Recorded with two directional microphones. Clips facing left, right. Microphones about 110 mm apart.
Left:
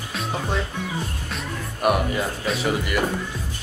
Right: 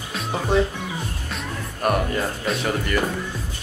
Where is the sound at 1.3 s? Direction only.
10° left (ahead or behind).